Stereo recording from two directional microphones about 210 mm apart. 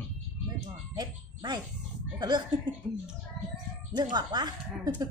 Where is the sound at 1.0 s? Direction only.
20° right (ahead or behind).